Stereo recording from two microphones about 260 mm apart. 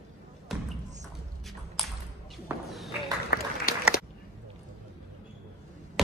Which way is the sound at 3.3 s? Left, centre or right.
Left.